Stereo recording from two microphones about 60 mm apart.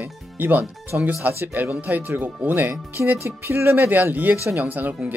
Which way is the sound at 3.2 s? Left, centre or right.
Right.